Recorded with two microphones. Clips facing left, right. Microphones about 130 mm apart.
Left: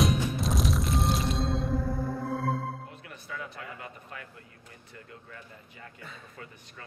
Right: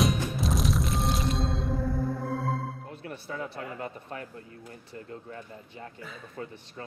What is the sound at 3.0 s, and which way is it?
Speech, 35° right (ahead or behind).